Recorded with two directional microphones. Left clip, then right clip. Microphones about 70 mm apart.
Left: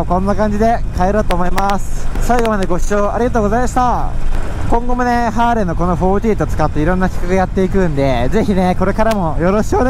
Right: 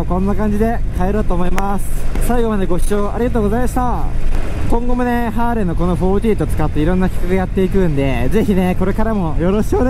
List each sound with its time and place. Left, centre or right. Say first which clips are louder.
0.1 s speech: left 5 dB; left
0.6 s speech: left 5 dB; centre